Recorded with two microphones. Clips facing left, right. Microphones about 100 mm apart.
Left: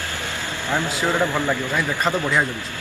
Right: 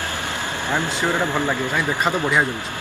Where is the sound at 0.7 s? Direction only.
15° right (ahead or behind).